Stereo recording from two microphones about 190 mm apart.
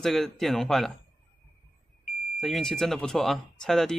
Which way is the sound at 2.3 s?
Centre (ahead or behind).